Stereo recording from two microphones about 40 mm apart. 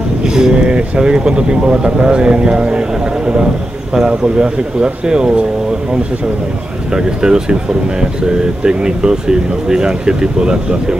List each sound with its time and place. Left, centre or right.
0.2 s speech: centre
3.9 s speech: centre
6.9 s speech: centre